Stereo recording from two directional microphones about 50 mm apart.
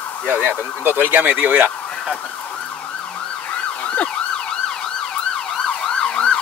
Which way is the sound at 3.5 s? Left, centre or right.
Left.